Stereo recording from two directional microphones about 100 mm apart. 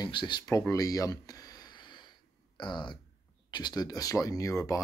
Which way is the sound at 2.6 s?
50° left (ahead or behind).